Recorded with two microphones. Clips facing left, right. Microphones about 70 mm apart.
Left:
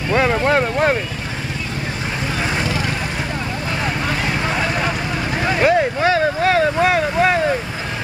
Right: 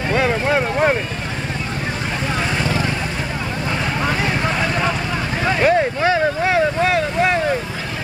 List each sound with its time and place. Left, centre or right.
0.1 s vehicle: left
0.5 s vehicle: centre
4.3 s vehicle: centre
6.1 s boat: centre
6.8 s boat: centre